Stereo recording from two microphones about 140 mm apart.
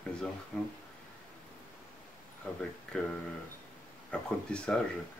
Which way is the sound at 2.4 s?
10° left (ahead or behind).